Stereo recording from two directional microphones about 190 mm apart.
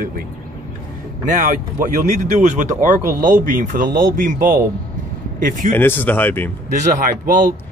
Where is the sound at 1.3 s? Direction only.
45° right (ahead or behind).